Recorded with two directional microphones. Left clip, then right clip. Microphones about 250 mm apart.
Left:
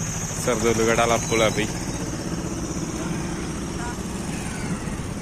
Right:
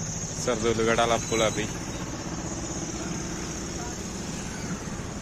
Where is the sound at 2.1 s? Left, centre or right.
Left.